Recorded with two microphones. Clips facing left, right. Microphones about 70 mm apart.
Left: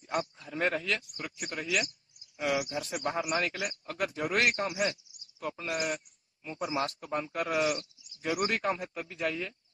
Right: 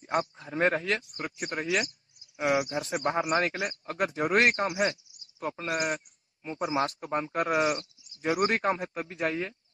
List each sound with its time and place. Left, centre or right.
0.0 s speech: right